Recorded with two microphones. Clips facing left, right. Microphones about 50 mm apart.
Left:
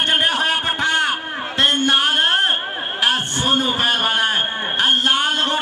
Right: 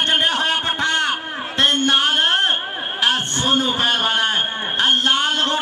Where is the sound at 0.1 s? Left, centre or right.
Centre.